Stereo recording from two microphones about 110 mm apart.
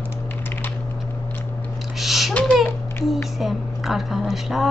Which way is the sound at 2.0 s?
Centre (ahead or behind).